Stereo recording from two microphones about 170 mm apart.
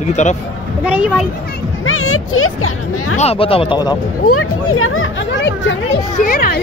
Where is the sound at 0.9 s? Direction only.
5° right (ahead or behind).